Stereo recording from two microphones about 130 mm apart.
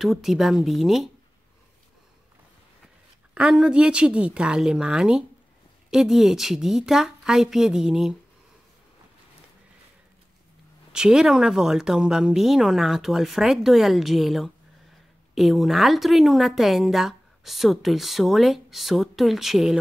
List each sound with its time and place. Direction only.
0.0 s a woman's voice: centre (ahead or behind)
3.3 s a woman's voice: 5° right (ahead or behind)
10.9 s a woman's voice: 5° right (ahead or behind)